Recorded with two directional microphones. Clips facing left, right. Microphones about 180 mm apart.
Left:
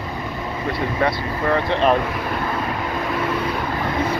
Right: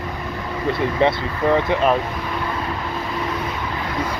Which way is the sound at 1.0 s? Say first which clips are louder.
Right 3 dB; 15° right (ahead or behind).